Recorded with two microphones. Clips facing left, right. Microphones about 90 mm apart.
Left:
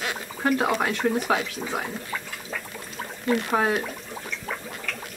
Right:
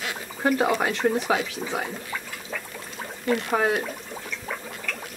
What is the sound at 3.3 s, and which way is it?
Speech, 10° left (ahead or behind).